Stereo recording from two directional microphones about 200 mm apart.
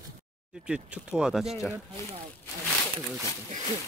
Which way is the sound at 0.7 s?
5° right (ahead or behind).